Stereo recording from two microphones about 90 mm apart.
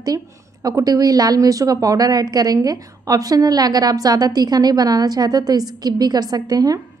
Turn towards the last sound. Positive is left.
turn(degrees=-45)  # may be behind; listen again after turning